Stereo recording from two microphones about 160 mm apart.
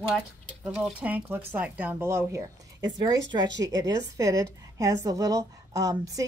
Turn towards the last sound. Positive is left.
turn(degrees=-20)  # may be behind; listen again after turning